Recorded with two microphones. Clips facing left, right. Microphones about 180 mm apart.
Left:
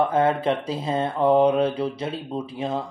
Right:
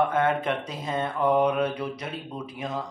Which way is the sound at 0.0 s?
30° left (ahead or behind).